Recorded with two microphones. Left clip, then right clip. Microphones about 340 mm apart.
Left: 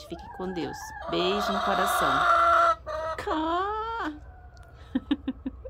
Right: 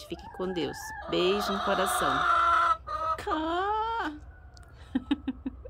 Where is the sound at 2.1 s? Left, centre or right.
Left.